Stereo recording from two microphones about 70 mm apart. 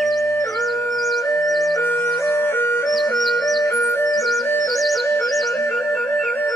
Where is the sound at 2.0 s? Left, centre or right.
Left.